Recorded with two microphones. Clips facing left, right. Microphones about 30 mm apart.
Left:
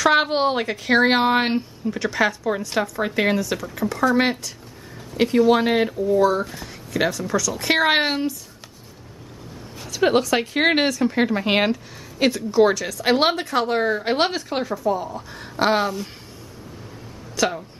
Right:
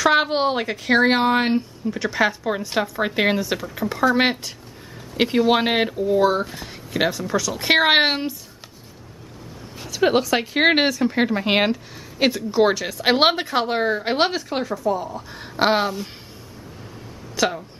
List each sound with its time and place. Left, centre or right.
0.0 s a woman's voice: centre
1.9 s speech: centre
2.4 s speech: centre
9.8 s speech: centre
15.3 s speech: centre
17.4 s speech: centre